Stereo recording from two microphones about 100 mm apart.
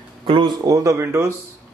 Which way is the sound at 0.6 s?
35° right (ahead or behind).